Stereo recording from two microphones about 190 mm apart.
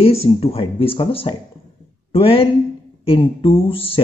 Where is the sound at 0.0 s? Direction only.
30° left (ahead or behind).